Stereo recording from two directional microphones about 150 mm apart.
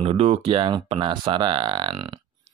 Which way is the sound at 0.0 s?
40° right (ahead or behind).